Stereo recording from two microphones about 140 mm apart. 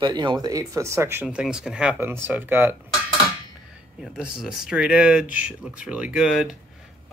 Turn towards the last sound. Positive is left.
turn(degrees=-5)  # may be behind; listen again after turning